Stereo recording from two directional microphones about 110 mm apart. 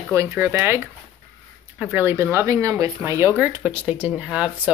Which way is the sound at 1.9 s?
20° right (ahead or behind).